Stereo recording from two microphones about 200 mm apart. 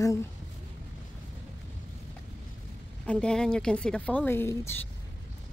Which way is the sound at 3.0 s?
5° left (ahead or behind).